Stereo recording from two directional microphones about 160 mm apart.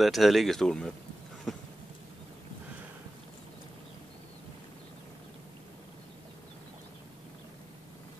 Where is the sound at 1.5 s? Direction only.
Centre (ahead or behind).